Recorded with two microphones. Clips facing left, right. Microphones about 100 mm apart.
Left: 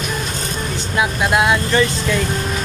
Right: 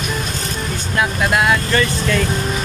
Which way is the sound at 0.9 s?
20° left (ahead or behind).